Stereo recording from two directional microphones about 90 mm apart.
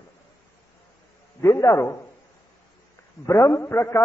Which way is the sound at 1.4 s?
35° left (ahead or behind).